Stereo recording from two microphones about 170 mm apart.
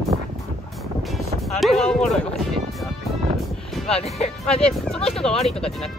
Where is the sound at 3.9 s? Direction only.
35° left (ahead or behind).